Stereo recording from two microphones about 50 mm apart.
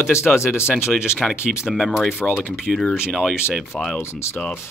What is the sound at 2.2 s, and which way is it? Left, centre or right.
Speech, centre.